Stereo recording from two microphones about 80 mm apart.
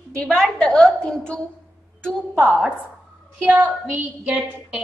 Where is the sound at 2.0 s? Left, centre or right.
Centre.